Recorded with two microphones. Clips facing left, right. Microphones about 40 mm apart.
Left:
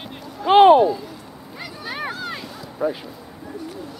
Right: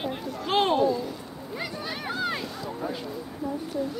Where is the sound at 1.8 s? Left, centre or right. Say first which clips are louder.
Left 5 dB; centre.